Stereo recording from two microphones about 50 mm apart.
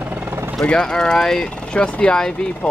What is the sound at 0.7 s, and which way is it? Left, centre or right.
Speech, centre.